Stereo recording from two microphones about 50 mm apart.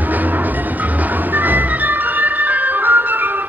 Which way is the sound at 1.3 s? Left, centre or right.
Right.